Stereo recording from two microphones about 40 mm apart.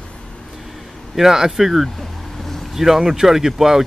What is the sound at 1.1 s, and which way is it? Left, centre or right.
Speech, centre.